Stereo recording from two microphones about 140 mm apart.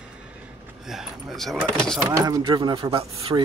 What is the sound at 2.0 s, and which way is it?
Speech, 25° right (ahead or behind).